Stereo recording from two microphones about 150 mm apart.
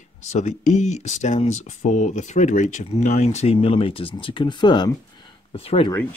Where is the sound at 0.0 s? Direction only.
55° left (ahead or behind).